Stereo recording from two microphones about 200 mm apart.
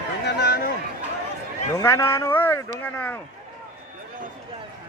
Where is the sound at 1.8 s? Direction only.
15° left (ahead or behind).